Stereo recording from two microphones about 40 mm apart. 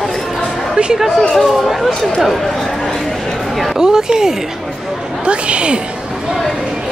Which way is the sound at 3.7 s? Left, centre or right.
Centre.